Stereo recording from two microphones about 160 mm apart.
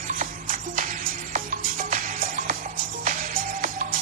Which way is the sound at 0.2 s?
55° right (ahead or behind).